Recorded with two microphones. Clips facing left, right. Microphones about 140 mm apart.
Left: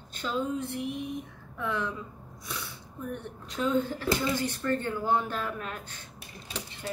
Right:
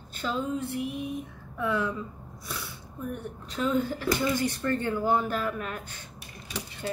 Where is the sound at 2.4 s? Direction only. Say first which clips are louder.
Right 1 dB; 5° right (ahead or behind).